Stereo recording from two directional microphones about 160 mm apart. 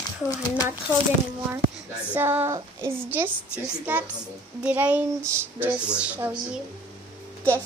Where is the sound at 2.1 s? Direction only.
15° right (ahead or behind).